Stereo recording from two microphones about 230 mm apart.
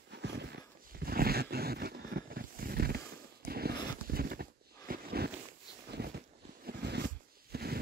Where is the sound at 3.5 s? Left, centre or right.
Right.